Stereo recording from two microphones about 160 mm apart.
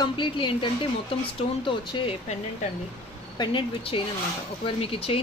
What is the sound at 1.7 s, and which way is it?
Speech, 35° left (ahead or behind).